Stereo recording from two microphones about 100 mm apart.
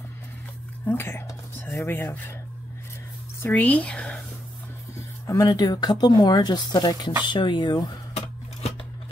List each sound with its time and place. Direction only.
0.8 s speech: 25° left (ahead or behind)
3.4 s speech: 15° left (ahead or behind)
5.2 s speech: 35° left (ahead or behind)